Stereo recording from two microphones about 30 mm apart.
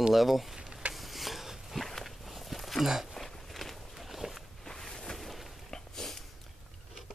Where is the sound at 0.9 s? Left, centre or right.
Centre.